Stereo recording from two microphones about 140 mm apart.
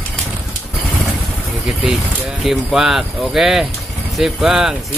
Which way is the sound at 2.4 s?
Centre (ahead or behind).